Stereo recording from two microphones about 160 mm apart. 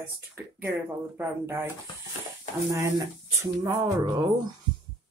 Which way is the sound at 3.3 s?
20° right (ahead or behind).